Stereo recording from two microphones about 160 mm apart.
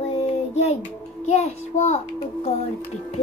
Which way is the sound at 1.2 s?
45° left (ahead or behind).